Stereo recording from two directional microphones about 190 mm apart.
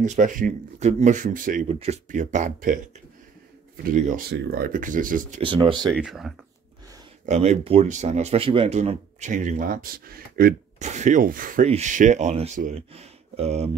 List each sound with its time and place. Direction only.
0.0 s speech: 40° right (ahead or behind)
1.7 s speech: 35° right (ahead or behind)
5.4 s speech: 25° right (ahead or behind)
5.9 s speech: 5° right (ahead or behind)
7.2 s speech: 35° right (ahead or behind)